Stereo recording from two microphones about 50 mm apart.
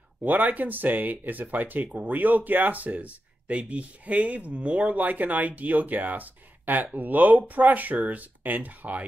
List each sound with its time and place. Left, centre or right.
0.2 s speech: right